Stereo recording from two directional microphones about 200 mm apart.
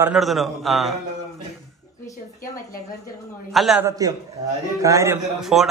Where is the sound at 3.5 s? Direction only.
Centre (ahead or behind).